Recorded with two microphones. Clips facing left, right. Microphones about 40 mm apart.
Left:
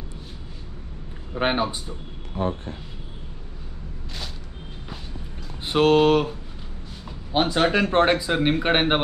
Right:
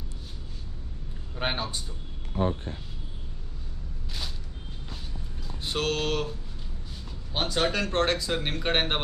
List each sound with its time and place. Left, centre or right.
1.3 s speech: left
2.3 s speech: left
5.6 s speech: left